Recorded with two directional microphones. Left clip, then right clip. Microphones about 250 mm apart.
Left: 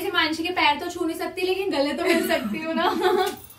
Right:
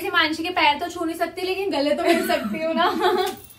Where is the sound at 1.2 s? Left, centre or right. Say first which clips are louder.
Right 1 dB; centre.